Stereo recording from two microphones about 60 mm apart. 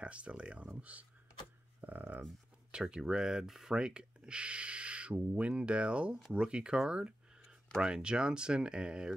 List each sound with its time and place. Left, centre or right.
0.0 s speech: right
1.8 s a sound: right
2.7 s speech: centre